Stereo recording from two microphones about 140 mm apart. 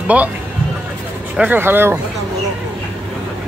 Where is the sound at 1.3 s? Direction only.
15° right (ahead or behind).